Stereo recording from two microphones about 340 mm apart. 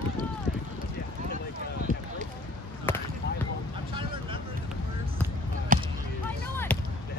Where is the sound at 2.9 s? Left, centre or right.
Centre.